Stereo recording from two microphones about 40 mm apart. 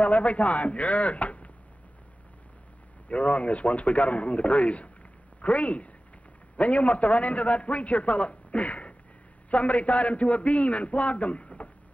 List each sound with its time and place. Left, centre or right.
0.0 s a man's voice: left
3.1 s a man's voice: left